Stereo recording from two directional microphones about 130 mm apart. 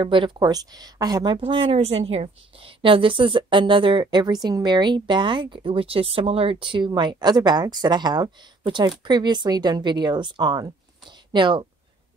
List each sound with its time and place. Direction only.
0.0 s a woman's voice: 40° right (ahead or behind)
1.4 s a woman's voice: 45° right (ahead or behind)